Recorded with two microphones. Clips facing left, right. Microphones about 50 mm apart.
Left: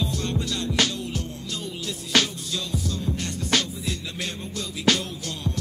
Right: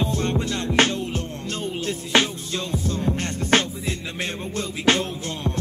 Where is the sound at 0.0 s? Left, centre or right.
Right.